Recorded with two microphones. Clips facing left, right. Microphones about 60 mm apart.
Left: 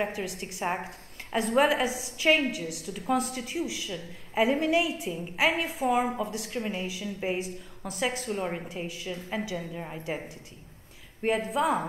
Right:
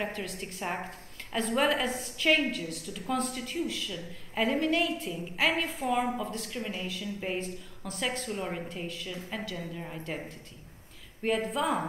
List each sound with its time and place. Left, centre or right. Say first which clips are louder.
0.0 s a woman's voice: left 3 dB; centre
8.4 s a woman's voice: left 3 dB; centre
8.6 s a woman's voice: left 2 dB; centre